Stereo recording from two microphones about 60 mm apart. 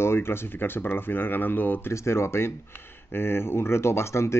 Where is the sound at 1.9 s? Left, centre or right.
Left.